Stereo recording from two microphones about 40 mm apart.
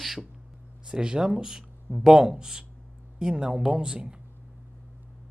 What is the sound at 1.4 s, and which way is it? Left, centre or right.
Speech, centre.